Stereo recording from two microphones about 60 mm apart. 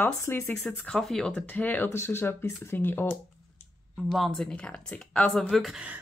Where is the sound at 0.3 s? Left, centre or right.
Left.